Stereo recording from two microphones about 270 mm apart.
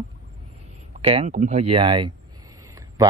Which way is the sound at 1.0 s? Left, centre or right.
Right.